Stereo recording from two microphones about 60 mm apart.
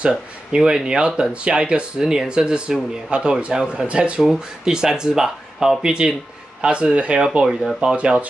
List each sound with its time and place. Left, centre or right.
0.0 s speech: centre
7.4 s speech: centre
7.9 s speech: centre